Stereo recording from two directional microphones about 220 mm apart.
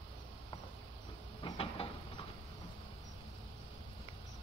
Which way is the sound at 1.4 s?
25° left (ahead or behind).